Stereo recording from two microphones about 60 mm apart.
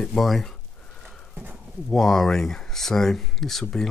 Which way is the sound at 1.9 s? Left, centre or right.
Centre.